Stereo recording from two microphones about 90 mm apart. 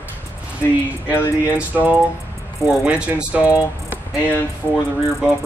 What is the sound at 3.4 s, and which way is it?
Speech, 40° left (ahead or behind).